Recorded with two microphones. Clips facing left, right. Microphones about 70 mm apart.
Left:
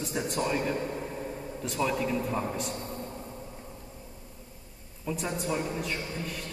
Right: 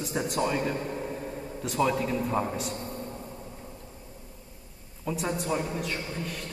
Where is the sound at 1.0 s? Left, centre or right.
Centre.